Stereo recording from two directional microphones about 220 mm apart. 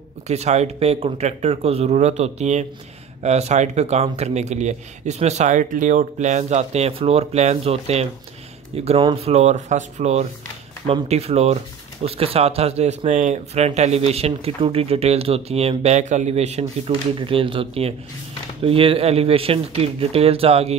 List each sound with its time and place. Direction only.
0.3 s speech: 30° right (ahead or behind)